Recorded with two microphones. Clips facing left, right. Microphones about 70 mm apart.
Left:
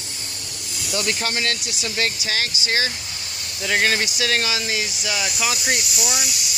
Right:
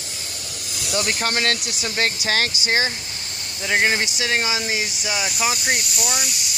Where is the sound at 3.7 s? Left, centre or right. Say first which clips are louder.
Right 1 dB; centre.